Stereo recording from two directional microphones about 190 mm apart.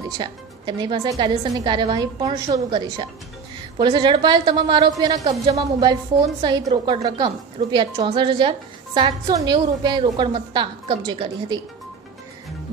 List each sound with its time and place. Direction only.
0.2 s a woman's voice: 25° right (ahead or behind)